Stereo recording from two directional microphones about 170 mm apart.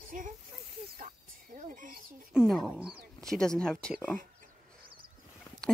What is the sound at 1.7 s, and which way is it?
Chicken, 50° right (ahead or behind).